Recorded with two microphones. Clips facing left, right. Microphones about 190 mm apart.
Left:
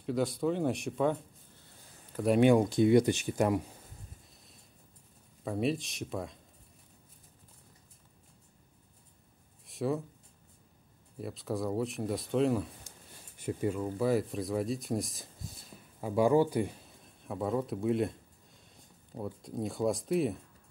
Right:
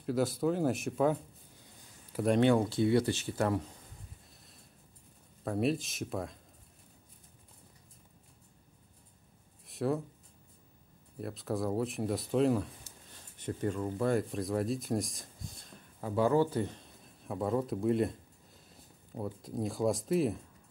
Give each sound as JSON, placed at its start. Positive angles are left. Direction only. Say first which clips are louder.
{"t": 0.0, "sound": "speech", "louder": "even", "side_deg": 0}
{"t": 2.2, "sound": "speech", "louder": "left 2 dB", "side_deg": 10}
{"t": 5.4, "sound": "speech", "louder": "right 1 dB", "side_deg": 0}
{"t": 9.7, "sound": "speech", "louder": "even", "side_deg": 0}
{"t": 11.1, "sound": "speech", "louder": "even", "side_deg": 0}